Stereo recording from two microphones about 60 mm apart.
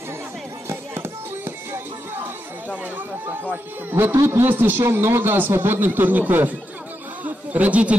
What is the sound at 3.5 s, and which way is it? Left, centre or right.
A man's voice, right.